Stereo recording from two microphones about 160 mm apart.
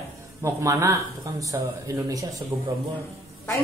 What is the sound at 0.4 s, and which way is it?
Speech, 20° right (ahead or behind).